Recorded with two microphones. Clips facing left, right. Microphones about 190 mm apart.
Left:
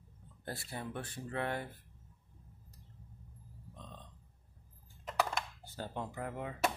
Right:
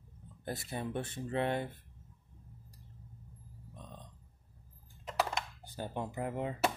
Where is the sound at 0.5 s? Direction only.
20° right (ahead or behind).